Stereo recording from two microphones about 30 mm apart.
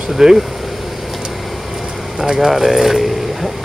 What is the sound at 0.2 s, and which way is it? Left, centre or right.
Speech, centre.